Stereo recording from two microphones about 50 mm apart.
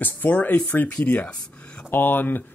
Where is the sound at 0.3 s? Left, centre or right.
Left.